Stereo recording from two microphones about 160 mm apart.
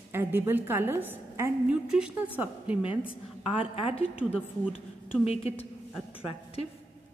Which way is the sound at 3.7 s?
40° left (ahead or behind).